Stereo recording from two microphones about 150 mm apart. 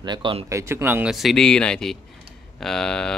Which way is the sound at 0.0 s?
30° right (ahead or behind).